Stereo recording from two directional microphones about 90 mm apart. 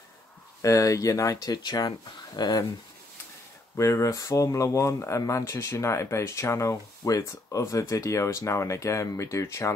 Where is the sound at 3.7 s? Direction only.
35° left (ahead or behind).